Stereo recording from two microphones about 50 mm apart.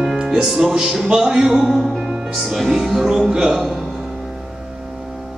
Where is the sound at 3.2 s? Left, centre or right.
Centre.